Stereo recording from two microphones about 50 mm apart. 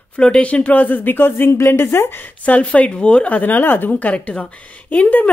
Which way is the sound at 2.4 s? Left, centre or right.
Left.